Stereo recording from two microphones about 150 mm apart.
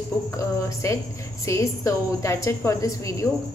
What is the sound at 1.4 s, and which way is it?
Speech, 20° left (ahead or behind).